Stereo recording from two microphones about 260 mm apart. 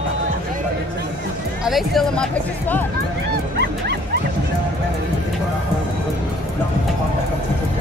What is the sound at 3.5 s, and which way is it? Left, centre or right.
Dog, right.